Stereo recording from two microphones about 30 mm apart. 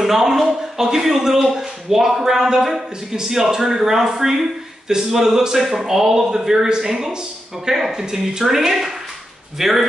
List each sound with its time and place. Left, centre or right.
0.0 s speech: centre
7.9 s speech: centre